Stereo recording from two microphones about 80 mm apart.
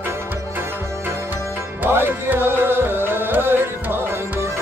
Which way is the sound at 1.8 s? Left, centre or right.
Right.